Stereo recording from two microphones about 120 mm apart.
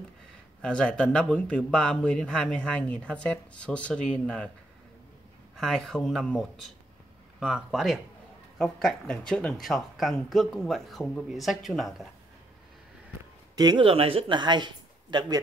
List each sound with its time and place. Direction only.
0.6 s a man's voice: 5° left (ahead or behind)
5.6 s speech: 5° left (ahead or behind)
13.6 s speech: 35° right (ahead or behind)
13.8 s speech: 50° right (ahead or behind); by 15.4 s 35° right (ahead or behind)